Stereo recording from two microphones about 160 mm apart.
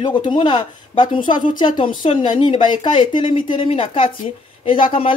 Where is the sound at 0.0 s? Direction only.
30° left (ahead or behind).